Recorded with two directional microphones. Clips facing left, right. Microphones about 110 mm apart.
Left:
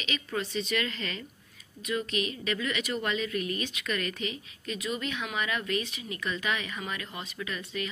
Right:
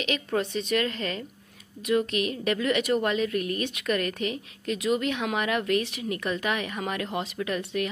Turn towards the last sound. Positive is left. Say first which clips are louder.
# right 7 dB
turn(degrees=-60)  # may be behind; listen again after turning